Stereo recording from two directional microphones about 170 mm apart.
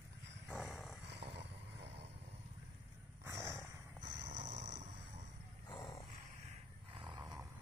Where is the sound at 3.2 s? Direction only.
15° right (ahead or behind).